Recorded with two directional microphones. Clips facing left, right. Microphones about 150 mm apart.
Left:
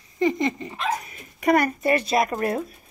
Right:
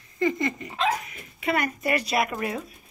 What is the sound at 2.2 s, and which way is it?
Speech, 45° left (ahead or behind).